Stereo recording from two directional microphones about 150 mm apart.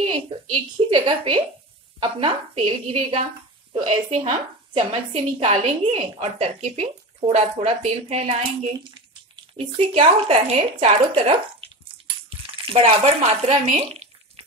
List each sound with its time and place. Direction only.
0.0 s speech: 35° right (ahead or behind)
9.6 s speech: 40° right (ahead or behind)